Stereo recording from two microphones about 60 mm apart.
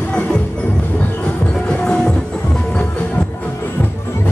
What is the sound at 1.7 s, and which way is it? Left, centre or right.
Music, centre.